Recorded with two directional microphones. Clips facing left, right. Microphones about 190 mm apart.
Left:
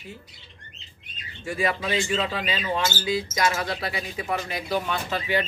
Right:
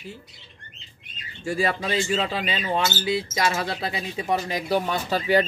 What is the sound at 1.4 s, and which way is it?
Speech, 30° right (ahead or behind).